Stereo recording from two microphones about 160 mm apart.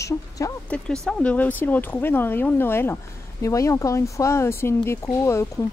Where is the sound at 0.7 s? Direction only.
10° left (ahead or behind).